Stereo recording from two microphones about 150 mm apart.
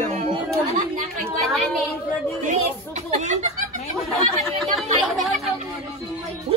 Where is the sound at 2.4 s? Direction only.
50° right (ahead or behind).